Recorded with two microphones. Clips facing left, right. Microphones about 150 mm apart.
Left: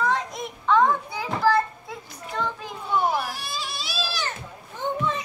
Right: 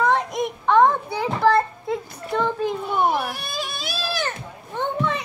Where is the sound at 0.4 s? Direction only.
60° right (ahead or behind).